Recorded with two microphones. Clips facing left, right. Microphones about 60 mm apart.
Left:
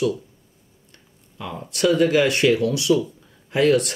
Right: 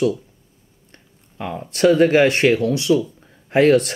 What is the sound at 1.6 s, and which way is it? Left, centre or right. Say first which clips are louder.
Speech: right 4 dB; right.